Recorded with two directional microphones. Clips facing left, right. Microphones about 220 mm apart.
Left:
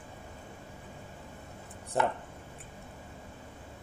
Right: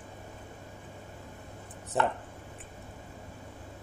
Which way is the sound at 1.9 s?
Centre (ahead or behind).